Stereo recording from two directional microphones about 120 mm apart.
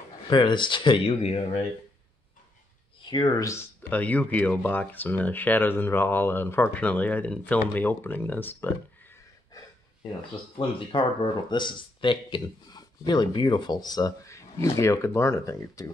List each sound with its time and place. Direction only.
0.3 s speech: 40° left (ahead or behind)
3.0 s speech: 40° left (ahead or behind)
3.9 s speech: 15° left (ahead or behind)
9.5 s a sound: 30° left (ahead or behind)
10.5 s speech: 40° left (ahead or behind)